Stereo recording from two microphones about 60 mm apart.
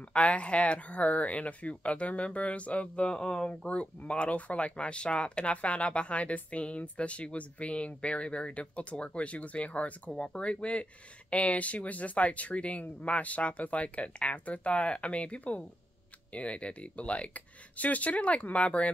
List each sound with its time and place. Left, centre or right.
0.1 s speech: centre